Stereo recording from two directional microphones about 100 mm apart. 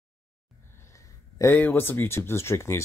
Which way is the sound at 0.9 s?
30° left (ahead or behind).